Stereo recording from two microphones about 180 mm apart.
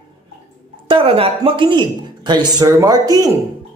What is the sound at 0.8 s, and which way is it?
Speech, 30° right (ahead or behind).